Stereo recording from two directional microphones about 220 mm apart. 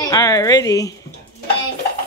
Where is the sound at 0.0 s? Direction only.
15° left (ahead or behind).